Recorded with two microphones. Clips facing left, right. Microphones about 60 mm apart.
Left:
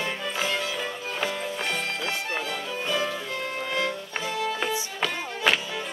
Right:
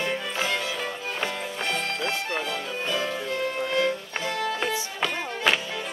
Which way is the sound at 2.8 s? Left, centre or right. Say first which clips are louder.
Left 1 dB; centre.